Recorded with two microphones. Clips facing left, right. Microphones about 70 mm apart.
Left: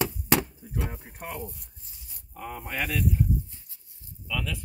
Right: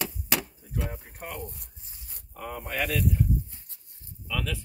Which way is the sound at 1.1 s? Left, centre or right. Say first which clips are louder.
Left 1 dB; centre.